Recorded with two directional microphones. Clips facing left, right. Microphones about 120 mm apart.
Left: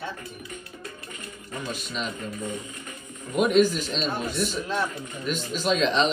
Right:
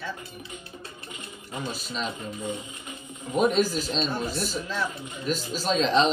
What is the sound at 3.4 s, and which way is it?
Speech, 35° right (ahead or behind).